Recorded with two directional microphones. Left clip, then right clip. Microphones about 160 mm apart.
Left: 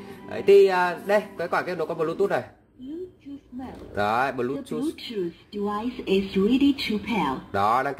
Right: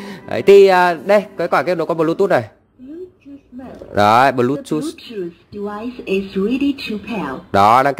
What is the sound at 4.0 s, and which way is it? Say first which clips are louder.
Speech: right 12 dB; 65° right (ahead or behind).